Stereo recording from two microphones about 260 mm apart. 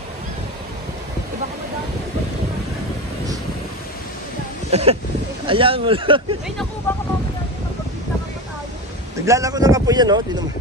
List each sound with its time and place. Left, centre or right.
4.6 s speech: right
6.9 s speech: centre
9.2 s speech: centre